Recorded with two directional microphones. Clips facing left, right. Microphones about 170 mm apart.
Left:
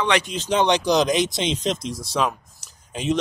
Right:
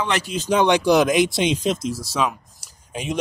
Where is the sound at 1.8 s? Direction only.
5° right (ahead or behind).